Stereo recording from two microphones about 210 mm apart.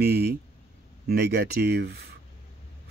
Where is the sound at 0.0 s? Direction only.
50° right (ahead or behind).